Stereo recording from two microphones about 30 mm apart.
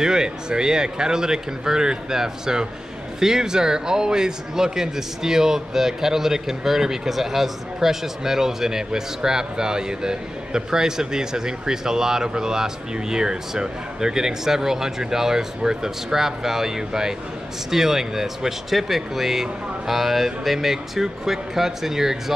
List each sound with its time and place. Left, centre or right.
0.0 s a man's voice: right